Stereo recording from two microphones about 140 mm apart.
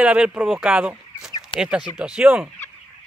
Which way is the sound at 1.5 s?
35° left (ahead or behind).